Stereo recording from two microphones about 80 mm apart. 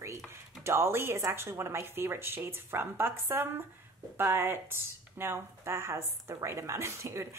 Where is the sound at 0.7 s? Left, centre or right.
Right.